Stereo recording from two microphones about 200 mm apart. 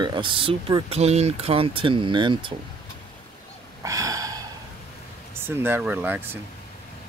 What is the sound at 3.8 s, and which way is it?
Snort, 15° right (ahead or behind).